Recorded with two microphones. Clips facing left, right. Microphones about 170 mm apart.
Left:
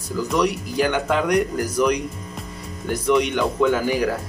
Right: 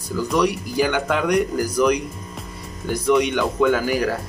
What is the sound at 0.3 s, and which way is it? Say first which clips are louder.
Speech: right 1 dB; centre (ahead or behind).